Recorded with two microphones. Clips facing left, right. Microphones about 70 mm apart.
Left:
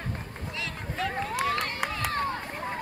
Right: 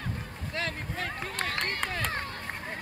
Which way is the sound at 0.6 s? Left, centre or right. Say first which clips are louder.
Even; right.